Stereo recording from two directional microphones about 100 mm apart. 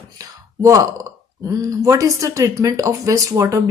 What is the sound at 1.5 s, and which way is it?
Speech, 35° right (ahead or behind).